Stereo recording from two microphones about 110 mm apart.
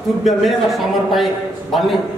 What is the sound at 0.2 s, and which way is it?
A man's voice, centre (ahead or behind).